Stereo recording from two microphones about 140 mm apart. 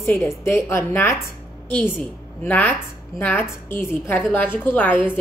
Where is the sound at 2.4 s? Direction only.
10° left (ahead or behind).